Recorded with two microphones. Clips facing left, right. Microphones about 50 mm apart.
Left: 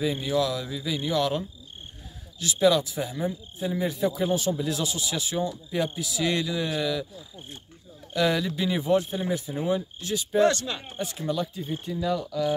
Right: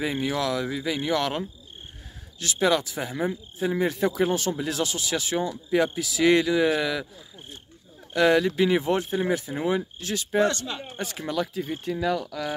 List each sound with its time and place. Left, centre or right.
0.0 s a man's voice: right
8.1 s speech: right
9.3 s a man's voice: right